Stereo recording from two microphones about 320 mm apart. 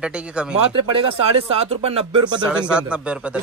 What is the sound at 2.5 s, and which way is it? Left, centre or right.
Speech, centre.